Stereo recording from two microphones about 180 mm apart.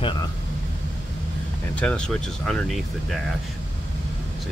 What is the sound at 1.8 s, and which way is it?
Speech, 5° left (ahead or behind).